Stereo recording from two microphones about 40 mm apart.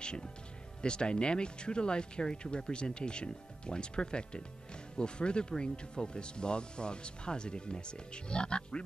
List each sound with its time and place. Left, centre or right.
0.0 s speech: left